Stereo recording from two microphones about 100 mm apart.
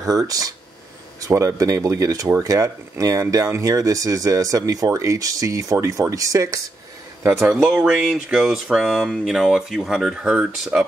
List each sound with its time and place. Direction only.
0.3 s speech: 35° right (ahead or behind)
7.3 s speech: 10° right (ahead or behind)
10.7 s speech: 15° right (ahead or behind)